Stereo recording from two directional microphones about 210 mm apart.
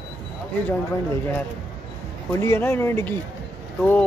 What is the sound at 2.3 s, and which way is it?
Speech, 10° left (ahead or behind).